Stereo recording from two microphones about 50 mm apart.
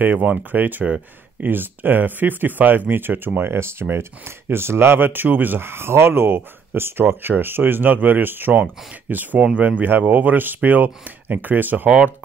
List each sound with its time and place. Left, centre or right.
0.0 s speech: right
9.4 s speech: right